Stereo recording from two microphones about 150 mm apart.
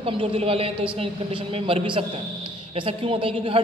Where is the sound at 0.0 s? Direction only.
35° right (ahead or behind).